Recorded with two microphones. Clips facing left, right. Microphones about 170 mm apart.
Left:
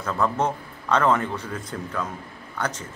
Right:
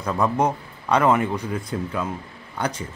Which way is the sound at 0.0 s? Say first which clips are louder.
Right 3 dB; 15° right (ahead or behind).